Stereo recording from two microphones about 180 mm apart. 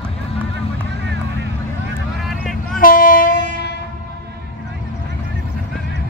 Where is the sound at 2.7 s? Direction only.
50° left (ahead or behind).